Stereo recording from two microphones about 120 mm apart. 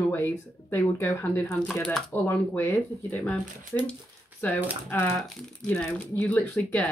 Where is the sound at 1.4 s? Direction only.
5° left (ahead or behind).